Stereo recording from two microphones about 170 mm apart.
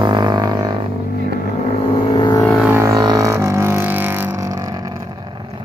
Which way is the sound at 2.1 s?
30° left (ahead or behind).